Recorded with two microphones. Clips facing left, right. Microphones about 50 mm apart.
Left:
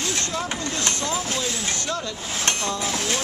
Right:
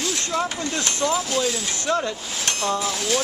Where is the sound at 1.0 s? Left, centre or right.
Right.